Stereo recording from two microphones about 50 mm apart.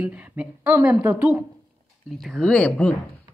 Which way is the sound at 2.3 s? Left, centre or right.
Centre.